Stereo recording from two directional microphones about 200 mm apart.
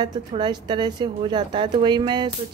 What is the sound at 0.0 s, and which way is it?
A woman's voice, 20° right (ahead or behind).